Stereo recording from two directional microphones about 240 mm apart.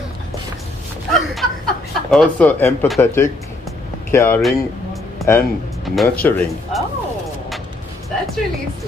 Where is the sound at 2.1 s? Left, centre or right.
Centre.